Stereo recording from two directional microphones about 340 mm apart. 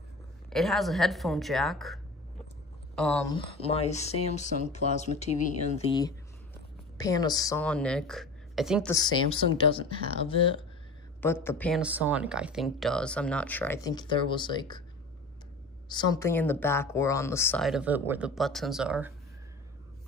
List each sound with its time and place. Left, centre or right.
0.5 s speech: centre
3.0 s speech: centre
3.3 s speech: centre
8.9 s speech: centre
15.9 s speech: centre